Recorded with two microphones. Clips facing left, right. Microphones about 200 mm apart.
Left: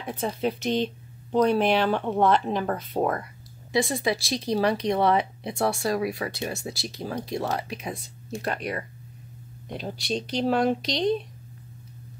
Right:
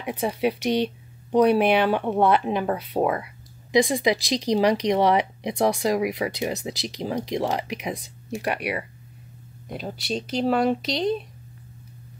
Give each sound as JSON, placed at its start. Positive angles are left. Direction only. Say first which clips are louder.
{"t": 0.0, "sound": "speech", "louder": "right 3 dB", "side_deg": -15}